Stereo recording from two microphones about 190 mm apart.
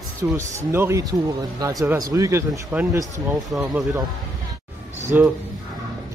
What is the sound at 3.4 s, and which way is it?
Speech, centre (ahead or behind).